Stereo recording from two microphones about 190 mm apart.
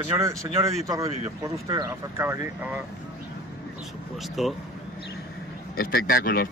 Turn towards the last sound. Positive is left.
turn(degrees=50)  # may be behind; listen again after turning